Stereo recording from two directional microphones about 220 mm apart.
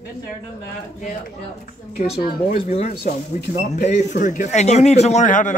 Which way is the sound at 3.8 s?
35° left (ahead or behind).